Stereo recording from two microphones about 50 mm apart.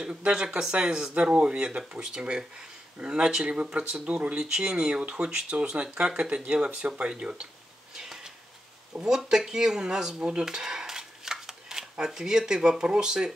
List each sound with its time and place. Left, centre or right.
0.0 s speech: centre
7.9 s a sound: centre
8.9 s speech: centre